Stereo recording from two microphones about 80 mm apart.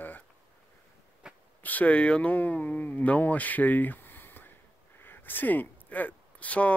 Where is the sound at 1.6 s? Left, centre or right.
Centre.